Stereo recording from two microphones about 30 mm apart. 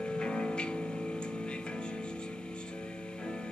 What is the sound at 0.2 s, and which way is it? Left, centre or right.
Music, left.